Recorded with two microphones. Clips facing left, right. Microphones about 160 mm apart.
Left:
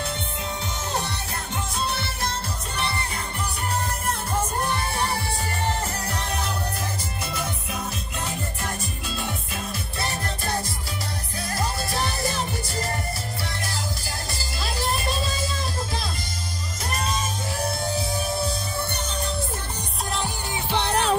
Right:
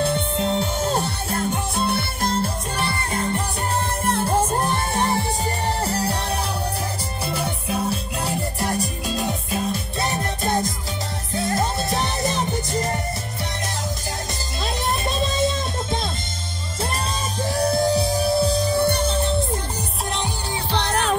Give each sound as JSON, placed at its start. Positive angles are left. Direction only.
{"t": 0.0, "sound": "music", "side_deg": -30}
{"t": 4.0, "sound": "music", "side_deg": -30}
{"t": 5.9, "sound": "music", "side_deg": -35}
{"t": 7.3, "sound": "music", "side_deg": -35}
{"t": 9.9, "sound": "music", "side_deg": -20}
{"t": 14.8, "sound": "music", "side_deg": -20}
{"t": 17.5, "sound": "music", "side_deg": -40}
{"t": 20.7, "sound": "music", "side_deg": 10}